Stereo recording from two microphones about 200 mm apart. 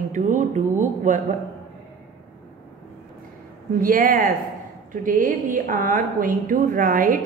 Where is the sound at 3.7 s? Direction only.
45° right (ahead or behind).